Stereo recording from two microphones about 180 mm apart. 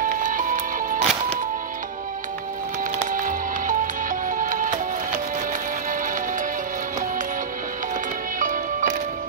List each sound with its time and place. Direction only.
0.0 s music: 45° right (ahead or behind)
3.0 s music: 45° right (ahead or behind)
8.4 s music: 45° right (ahead or behind)